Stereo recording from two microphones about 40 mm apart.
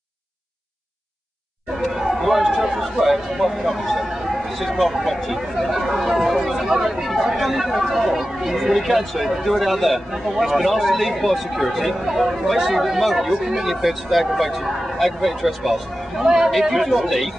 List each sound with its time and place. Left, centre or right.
1.8 s speech: centre